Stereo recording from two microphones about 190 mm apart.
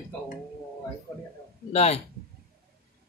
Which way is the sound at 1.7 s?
35° left (ahead or behind).